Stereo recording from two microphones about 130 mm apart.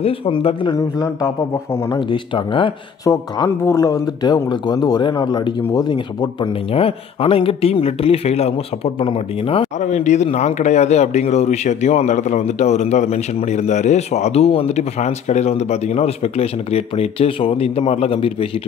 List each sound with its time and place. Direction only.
0.0 s a man's voice: 45° left (ahead or behind)
0.7 s a man's voice: 25° left (ahead or behind)
2.0 s speech: 40° left (ahead or behind)
3.1 s a man's voice: 25° left (ahead or behind); by 9.7 s 45° left (ahead or behind)
9.8 s a man's voice: 65° left (ahead or behind); by 18.5 s 45° left (ahead or behind)